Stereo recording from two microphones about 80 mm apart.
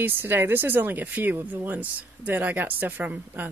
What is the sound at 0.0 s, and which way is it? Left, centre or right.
Speech, right.